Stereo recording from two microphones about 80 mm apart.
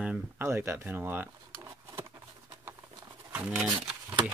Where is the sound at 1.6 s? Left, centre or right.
Right.